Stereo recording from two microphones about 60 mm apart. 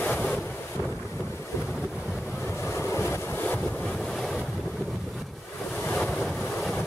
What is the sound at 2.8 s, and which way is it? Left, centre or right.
Vehicle, left.